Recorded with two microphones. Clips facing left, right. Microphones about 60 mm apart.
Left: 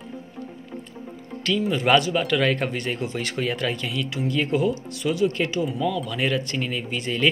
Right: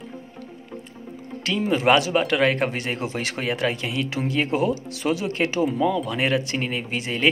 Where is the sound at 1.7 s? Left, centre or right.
Right.